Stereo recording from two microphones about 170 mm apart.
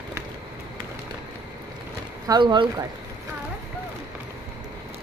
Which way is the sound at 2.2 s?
25° right (ahead or behind).